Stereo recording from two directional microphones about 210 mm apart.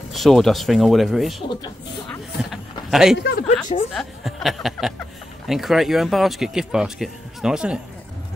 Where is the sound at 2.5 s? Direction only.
Centre (ahead or behind).